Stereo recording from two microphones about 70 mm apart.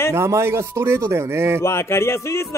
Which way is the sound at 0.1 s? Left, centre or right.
Right.